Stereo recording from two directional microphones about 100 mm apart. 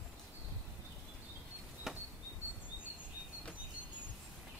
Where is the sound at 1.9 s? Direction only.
5° right (ahead or behind).